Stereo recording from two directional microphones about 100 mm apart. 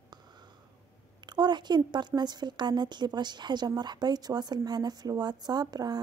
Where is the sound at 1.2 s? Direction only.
45° right (ahead or behind).